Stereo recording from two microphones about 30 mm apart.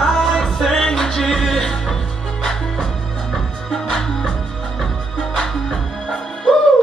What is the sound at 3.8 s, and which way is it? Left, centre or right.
Music, left.